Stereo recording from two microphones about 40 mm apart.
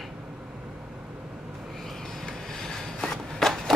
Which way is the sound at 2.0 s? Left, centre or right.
Centre.